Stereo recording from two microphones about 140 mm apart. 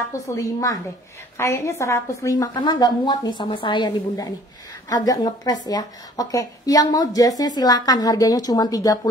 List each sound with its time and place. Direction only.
0.1 s a woman's voice: 20° left (ahead or behind)